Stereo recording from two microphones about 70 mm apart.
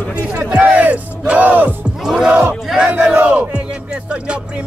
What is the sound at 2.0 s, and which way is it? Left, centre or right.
Music, centre.